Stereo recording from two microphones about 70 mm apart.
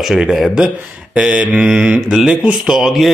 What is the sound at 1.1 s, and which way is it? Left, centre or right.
Mantra, centre.